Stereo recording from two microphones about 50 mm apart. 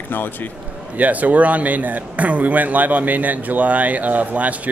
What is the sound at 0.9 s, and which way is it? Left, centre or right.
A man's voice, right.